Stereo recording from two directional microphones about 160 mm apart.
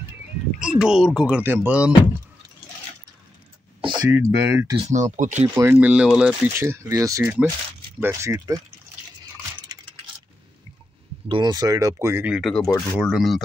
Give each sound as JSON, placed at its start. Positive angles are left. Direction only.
{"t": 0.6, "sound": "speech", "side_deg": -5}
{"t": 4.1, "sound": "speech", "side_deg": -15}
{"t": 4.7, "sound": "speech", "side_deg": -45}
{"t": 5.5, "sound": "speech", "side_deg": -15}
{"t": 11.2, "sound": "speech", "side_deg": -30}
{"t": 12.4, "sound": "speech", "side_deg": 0}